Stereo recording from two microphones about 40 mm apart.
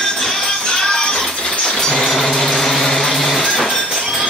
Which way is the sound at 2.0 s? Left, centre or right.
Centre.